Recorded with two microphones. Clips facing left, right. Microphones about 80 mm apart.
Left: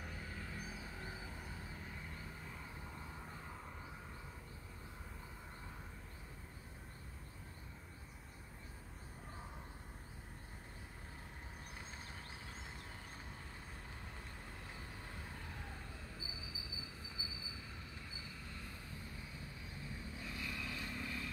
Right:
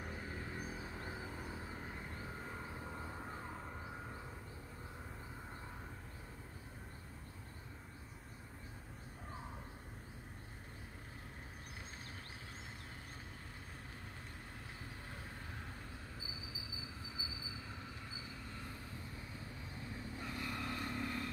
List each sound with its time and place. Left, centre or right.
0.0 s a sound: right
1.8 s vehicle: right
20.2 s vehicle: right